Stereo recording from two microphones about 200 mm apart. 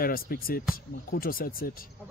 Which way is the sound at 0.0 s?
45° left (ahead or behind).